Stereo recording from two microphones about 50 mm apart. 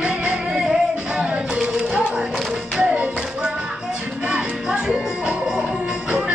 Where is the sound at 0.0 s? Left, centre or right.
Right.